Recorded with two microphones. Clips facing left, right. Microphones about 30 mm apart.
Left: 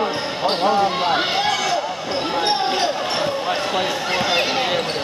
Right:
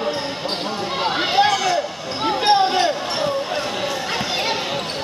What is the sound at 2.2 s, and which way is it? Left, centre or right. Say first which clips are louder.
Basketball bounce: right 5 dB; centre.